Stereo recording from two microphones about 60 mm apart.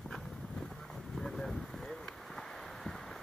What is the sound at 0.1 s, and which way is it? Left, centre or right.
Vehicle, centre.